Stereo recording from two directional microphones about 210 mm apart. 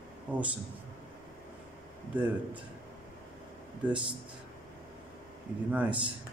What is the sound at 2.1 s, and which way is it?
Speech, 5° right (ahead or behind).